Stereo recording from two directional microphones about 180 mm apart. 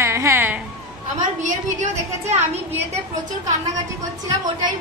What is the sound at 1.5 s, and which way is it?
Speech, 40° right (ahead or behind).